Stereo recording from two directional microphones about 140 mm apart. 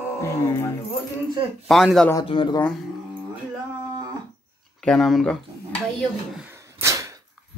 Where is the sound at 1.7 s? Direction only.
Centre (ahead or behind).